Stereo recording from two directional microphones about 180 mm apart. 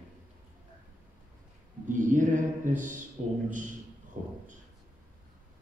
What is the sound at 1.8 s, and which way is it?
A man's voice, 45° right (ahead or behind).